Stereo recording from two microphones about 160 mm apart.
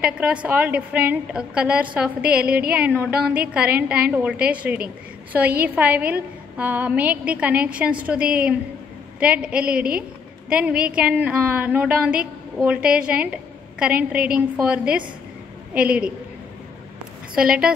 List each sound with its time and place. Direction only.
0.0 s a woman's voice: 5° right (ahead or behind)
2.4 s a woman's voice: 70° right (ahead or behind)
3.0 s a woman's voice: 5° right (ahead or behind)